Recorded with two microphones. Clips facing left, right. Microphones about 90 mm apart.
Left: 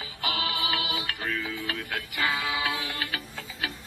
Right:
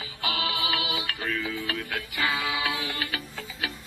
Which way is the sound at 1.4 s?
15° left (ahead or behind).